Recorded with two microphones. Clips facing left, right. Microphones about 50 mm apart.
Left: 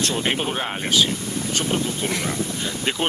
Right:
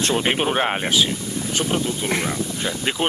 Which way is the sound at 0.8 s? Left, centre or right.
Centre.